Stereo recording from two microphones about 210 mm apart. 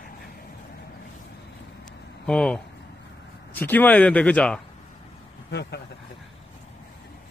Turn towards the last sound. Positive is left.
turn(degrees=50)  # may be behind; listen again after turning